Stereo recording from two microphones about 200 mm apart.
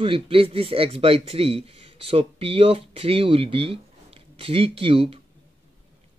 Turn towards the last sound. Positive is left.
turn(degrees=-30)  # may be behind; listen again after turning